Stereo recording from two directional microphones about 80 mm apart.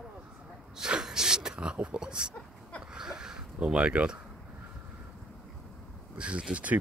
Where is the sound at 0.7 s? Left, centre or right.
Centre.